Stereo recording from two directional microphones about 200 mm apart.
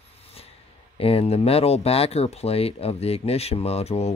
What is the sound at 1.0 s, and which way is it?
Speech, 30° left (ahead or behind).